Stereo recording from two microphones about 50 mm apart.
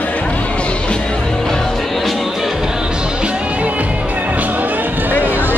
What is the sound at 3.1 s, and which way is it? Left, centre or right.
Music, right.